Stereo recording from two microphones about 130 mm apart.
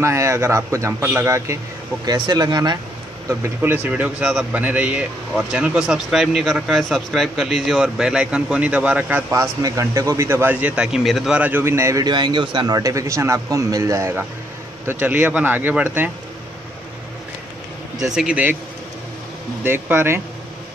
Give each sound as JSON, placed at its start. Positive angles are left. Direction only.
{"t": 0.0, "sound": "a man's voice", "side_deg": -20}
{"t": 3.3, "sound": "speech", "side_deg": -20}
{"t": 9.3, "sound": "a man's voice", "side_deg": -25}
{"t": 12.1, "sound": "a man's voice", "side_deg": -35}
{"t": 18.1, "sound": "speech", "side_deg": -5}
{"t": 19.6, "sound": "speech", "side_deg": -15}